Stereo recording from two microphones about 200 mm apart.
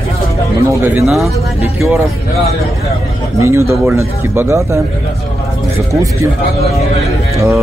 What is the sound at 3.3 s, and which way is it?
Speech, 15° right (ahead or behind).